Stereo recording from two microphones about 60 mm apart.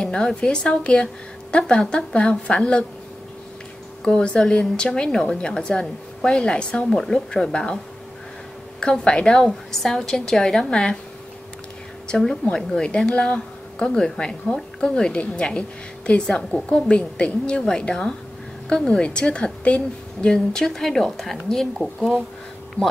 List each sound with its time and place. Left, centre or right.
0.0 s a woman's voice: centre
4.0 s a woman's voice: centre
12.1 s a woman's voice: centre
22.8 s speech: left